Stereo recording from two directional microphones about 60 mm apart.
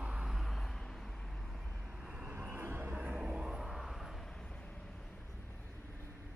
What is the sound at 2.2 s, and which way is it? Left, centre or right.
Vehicle, right.